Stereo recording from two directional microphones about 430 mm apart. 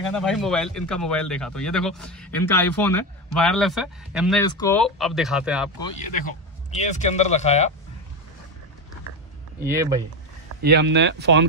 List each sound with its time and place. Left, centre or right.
0.0 s speech: centre
6.8 s speech: centre
9.6 s speech: centre
10.6 s speech: right